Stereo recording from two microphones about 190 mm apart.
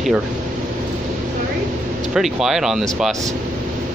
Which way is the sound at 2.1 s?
Centre (ahead or behind).